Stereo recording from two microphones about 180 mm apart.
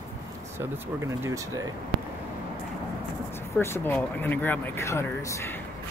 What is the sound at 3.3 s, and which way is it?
Speech, 15° left (ahead or behind).